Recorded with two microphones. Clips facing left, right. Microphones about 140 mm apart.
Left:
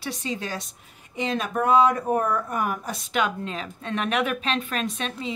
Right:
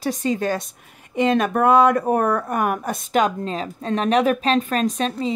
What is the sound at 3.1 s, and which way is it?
A woman's voice, 40° right (ahead or behind).